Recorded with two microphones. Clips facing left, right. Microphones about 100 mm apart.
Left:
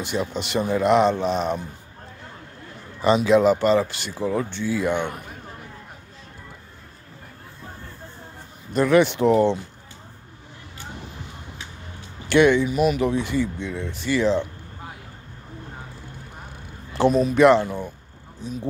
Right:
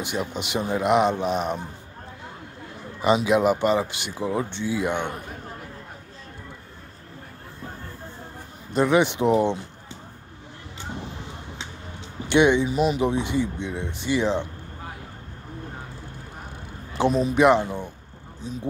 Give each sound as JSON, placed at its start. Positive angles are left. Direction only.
{"t": 0.0, "sound": "speech", "side_deg": -15}
{"t": 3.0, "sound": "speech", "side_deg": -15}
{"t": 8.7, "sound": "speech", "side_deg": -20}
{"t": 12.3, "sound": "speech", "side_deg": -20}
{"t": 17.2, "sound": "speech", "side_deg": -20}